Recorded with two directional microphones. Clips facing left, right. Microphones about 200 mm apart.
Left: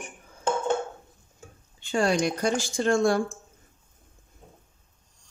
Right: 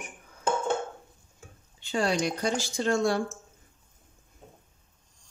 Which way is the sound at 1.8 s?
50° left (ahead or behind).